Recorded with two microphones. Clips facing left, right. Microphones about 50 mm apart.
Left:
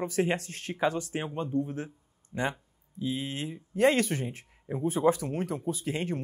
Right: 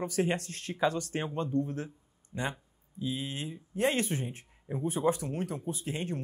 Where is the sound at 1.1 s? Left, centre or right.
Centre.